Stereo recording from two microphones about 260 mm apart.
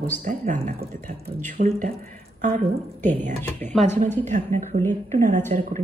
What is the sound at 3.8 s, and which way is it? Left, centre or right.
Speech, right.